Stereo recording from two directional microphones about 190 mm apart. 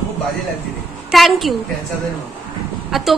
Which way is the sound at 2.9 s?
Centre (ahead or behind).